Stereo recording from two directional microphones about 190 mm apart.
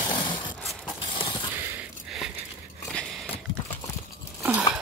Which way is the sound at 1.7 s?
5° right (ahead or behind).